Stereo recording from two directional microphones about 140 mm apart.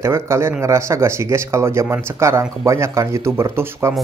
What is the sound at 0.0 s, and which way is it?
Speech, 20° right (ahead or behind).